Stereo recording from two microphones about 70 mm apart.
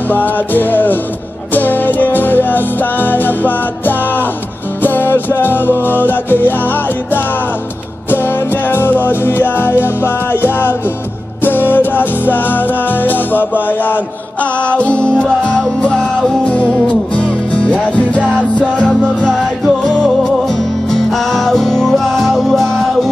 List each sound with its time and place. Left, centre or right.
0.1 s music: left
8.6 s music: left
20.9 s music: centre